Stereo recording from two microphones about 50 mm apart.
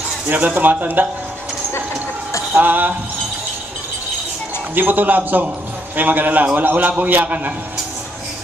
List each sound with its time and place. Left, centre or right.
0.6 s a man's voice: right
2.5 s a man's voice: right
4.7 s a man's voice: right